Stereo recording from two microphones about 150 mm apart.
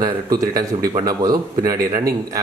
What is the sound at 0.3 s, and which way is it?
Speech, 25° right (ahead or behind).